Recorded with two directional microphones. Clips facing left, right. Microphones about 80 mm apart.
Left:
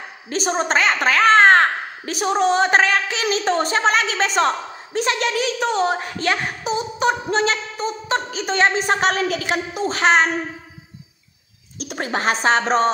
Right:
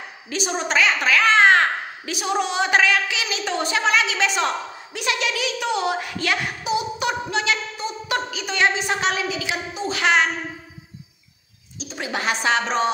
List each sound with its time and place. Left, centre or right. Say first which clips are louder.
0.3 s a woman's voice: left 4 dB; left
11.8 s bird: left 4 dB; left
12.1 s a woman's voice: left 3 dB; left